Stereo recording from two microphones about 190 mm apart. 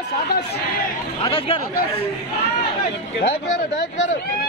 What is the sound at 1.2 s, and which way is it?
Speech, 25° left (ahead or behind).